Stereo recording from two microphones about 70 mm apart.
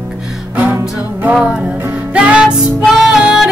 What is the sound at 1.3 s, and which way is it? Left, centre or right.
Music, centre.